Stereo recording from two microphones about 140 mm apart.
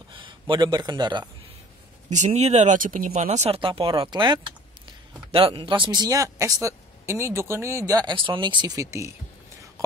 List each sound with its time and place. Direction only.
0.1 s speech: 35° right (ahead or behind)
2.0 s speech: 55° right (ahead or behind); by 9.1 s 20° right (ahead or behind)